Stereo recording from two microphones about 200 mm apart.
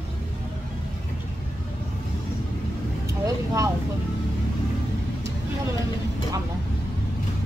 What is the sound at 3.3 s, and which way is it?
Vehicle, 15° right (ahead or behind).